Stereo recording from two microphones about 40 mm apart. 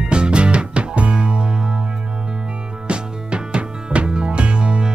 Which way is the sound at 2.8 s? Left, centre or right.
Right.